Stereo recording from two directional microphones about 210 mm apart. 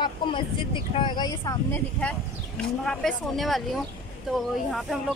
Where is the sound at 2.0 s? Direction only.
5° left (ahead or behind).